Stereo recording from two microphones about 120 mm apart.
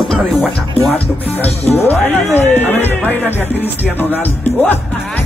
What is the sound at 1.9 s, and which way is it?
Speech, 15° left (ahead or behind).